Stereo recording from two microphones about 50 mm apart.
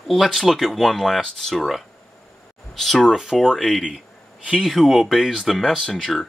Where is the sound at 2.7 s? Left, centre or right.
Centre.